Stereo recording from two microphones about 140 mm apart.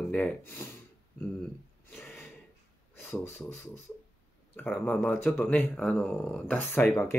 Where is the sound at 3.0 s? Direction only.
15° left (ahead or behind).